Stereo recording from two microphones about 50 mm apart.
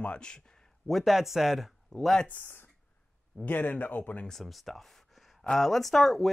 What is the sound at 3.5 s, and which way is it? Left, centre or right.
Speech, left.